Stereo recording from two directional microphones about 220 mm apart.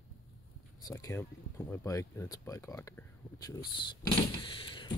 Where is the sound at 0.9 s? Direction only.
15° left (ahead or behind).